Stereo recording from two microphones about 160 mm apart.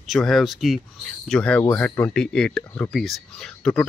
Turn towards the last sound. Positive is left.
turn(degrees=5)  # may be behind; listen again after turning